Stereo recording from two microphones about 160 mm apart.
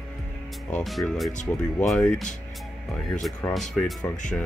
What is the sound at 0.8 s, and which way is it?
Speech, centre (ahead or behind).